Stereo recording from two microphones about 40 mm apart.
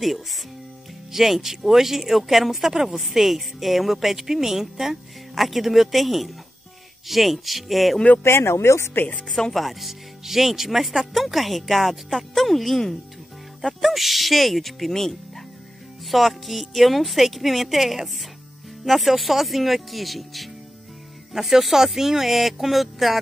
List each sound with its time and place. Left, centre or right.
0.0 s speech: centre
8.2 s speech: left
9.3 s speech: centre